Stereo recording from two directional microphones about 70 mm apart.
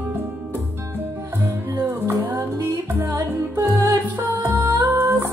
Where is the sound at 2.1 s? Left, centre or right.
Right.